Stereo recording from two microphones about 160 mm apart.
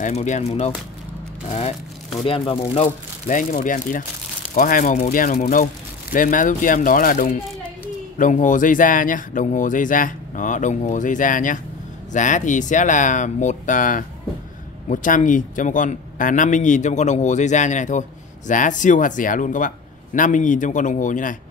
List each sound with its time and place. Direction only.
0.0 s speech: 45° left (ahead or behind)